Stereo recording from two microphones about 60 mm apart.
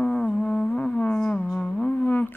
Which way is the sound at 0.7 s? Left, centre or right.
Centre.